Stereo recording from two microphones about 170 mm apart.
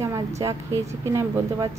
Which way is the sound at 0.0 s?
20° right (ahead or behind).